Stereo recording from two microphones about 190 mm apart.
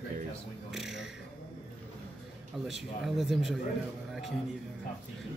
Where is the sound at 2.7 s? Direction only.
Centre (ahead or behind).